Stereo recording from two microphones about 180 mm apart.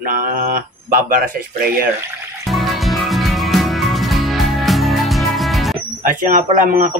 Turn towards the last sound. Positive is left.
turn(degrees=-45)  # may be behind; listen again after turning